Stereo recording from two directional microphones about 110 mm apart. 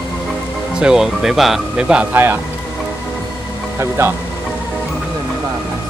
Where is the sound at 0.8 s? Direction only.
5° right (ahead or behind).